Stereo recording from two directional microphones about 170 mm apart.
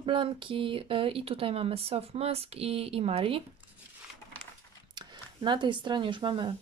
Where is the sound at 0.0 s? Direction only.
30° right (ahead or behind).